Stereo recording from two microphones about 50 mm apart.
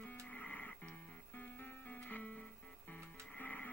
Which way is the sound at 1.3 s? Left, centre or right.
Left.